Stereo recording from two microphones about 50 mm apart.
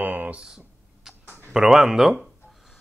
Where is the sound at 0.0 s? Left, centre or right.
Right.